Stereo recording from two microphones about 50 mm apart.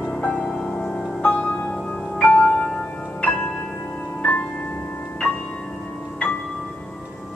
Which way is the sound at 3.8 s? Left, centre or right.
Centre.